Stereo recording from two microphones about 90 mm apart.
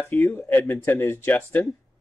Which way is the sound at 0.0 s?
30° left (ahead or behind).